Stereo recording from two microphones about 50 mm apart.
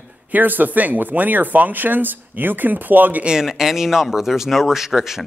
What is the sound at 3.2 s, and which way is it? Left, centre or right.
Speech, centre.